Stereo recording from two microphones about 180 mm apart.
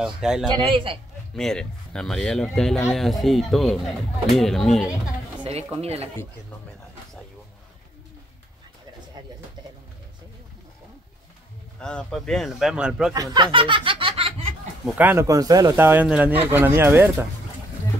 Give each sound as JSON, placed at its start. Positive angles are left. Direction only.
{"t": 0.0, "sound": "speech", "side_deg": -5}
{"t": 0.5, "sound": "a man's voice", "side_deg": -30}
{"t": 1.3, "sound": "speech", "side_deg": 5}
{"t": 5.4, "sound": "speech", "side_deg": -30}
{"t": 11.8, "sound": "speech", "side_deg": 5}
{"t": 13.1, "sound": "speech", "side_deg": -20}
{"t": 15.0, "sound": "speech", "side_deg": -15}